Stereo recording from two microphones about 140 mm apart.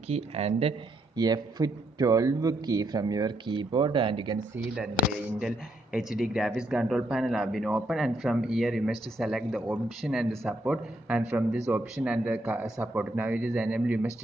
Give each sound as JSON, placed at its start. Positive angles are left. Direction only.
{"t": 0.1, "sound": "a man's voice", "side_deg": -45}
{"t": 1.1, "sound": "a man's voice", "side_deg": -30}
{"t": 5.9, "sound": "a man's voice", "side_deg": -5}